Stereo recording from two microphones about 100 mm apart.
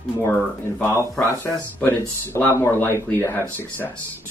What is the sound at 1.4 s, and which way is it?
Speech, 20° left (ahead or behind).